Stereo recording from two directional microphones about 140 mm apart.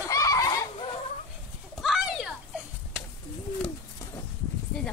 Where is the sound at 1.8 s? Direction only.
Centre (ahead or behind).